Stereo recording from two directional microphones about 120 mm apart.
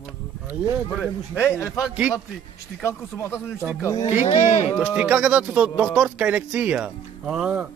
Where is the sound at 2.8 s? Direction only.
20° left (ahead or behind).